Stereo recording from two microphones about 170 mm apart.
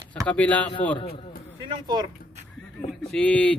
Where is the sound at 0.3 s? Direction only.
10° left (ahead or behind).